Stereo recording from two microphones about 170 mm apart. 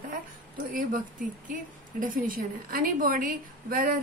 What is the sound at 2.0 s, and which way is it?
A woman's voice, 55° right (ahead or behind).